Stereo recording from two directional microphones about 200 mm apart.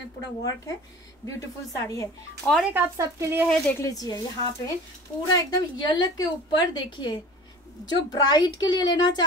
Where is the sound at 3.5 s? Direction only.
10° left (ahead or behind).